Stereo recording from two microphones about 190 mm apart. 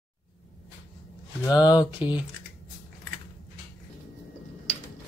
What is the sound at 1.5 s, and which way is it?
Speech, 20° left (ahead or behind).